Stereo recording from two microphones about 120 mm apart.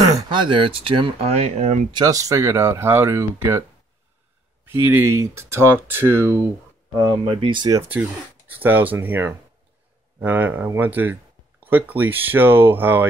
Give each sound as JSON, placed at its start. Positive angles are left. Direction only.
{"t": 0.0, "sound": "speech", "side_deg": -30}
{"t": 1.3, "sound": "speech", "side_deg": -65}
{"t": 1.9, "sound": "speech", "side_deg": -35}
{"t": 4.6, "sound": "speech", "side_deg": -15}
{"t": 7.4, "sound": "speech", "side_deg": -40}
{"t": 7.9, "sound": "speech", "side_deg": -15}